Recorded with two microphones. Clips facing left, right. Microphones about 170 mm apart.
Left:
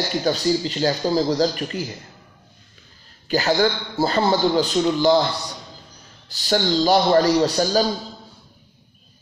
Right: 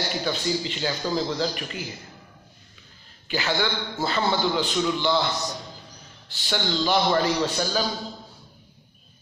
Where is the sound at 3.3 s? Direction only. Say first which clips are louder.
Left 7 dB; 40° left (ahead or behind).